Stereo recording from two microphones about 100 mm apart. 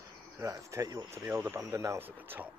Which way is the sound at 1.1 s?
25° right (ahead or behind).